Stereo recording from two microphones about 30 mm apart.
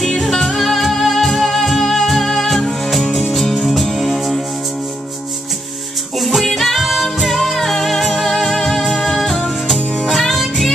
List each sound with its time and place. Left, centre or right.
0.6 s music: centre
6.4 s music: centre
6.7 s music: centre
9.2 s music: centre